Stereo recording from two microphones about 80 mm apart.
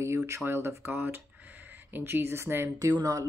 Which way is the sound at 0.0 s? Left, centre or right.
Right.